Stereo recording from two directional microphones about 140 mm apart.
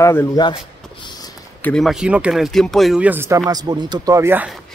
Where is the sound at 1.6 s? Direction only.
10° left (ahead or behind).